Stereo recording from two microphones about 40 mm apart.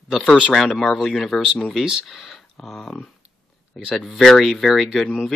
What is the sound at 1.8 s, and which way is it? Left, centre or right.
Speech, centre.